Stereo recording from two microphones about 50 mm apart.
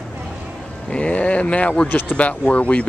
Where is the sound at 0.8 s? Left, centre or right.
Left.